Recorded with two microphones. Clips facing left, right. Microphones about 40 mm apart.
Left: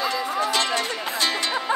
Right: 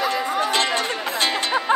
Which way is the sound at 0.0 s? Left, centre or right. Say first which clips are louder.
Right 2 dB; right.